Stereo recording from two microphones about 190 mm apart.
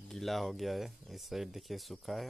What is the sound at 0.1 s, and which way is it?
Speech, centre (ahead or behind).